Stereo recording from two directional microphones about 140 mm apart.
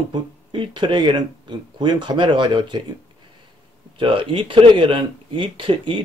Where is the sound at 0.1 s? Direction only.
35° right (ahead or behind).